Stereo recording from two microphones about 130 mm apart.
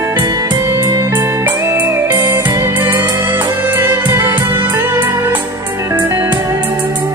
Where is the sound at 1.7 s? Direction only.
15° right (ahead or behind).